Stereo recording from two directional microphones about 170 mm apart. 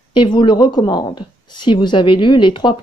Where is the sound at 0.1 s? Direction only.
30° left (ahead or behind).